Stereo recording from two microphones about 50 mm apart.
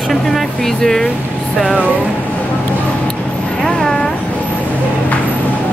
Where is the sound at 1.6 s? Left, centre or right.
Left.